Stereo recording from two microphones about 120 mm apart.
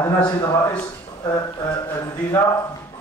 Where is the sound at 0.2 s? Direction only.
35° left (ahead or behind).